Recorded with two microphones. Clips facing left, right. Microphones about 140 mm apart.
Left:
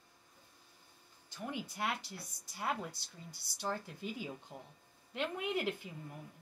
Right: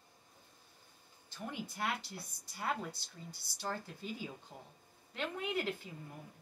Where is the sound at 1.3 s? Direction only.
15° left (ahead or behind).